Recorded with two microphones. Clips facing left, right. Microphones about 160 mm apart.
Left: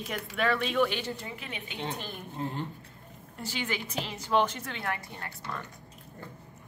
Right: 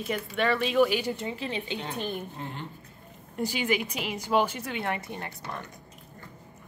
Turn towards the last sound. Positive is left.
turn(degrees=-20)  # may be behind; listen again after turning